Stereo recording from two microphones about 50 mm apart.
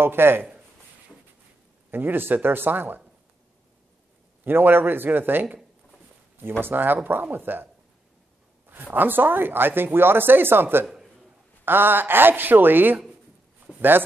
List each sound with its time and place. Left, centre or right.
0.0 s speech: right
1.9 s speech: right
4.5 s speech: right
6.6 s speech: right
8.6 s speech: right